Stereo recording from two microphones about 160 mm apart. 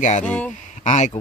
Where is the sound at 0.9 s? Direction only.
45° left (ahead or behind).